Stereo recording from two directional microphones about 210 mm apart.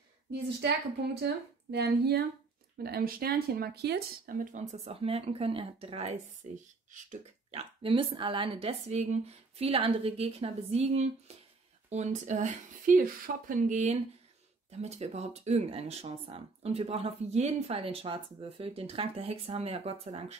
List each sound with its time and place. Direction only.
1.2 s speech: 50° right (ahead or behind); by 20.3 s 30° right (ahead or behind)